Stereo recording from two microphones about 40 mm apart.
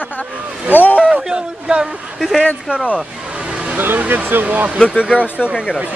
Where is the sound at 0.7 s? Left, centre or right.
Left.